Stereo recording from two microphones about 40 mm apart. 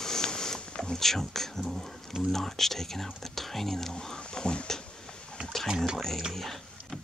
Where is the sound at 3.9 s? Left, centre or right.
Centre.